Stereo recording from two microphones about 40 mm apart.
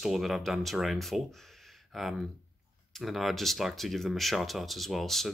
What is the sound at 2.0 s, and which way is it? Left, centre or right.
Speech, centre.